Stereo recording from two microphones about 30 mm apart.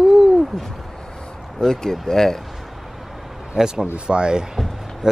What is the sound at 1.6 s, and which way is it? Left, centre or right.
Speech, centre.